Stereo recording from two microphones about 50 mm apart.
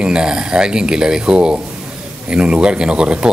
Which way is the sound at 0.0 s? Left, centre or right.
Centre.